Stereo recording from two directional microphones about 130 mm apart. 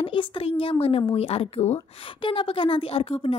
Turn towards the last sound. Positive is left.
turn(degrees=45)  # may be behind; listen again after turning